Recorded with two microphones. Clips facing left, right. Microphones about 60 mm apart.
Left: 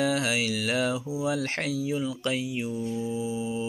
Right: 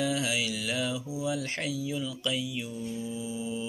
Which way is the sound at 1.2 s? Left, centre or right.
Left.